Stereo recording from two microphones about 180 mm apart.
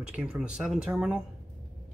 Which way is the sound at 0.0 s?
5° right (ahead or behind).